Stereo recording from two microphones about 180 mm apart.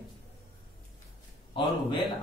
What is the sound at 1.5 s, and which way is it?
Speech, 25° left (ahead or behind).